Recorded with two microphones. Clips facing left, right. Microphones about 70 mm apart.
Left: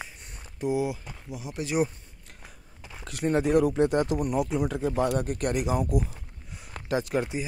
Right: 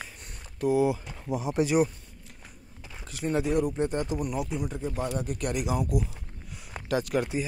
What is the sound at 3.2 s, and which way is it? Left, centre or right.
Speech, left.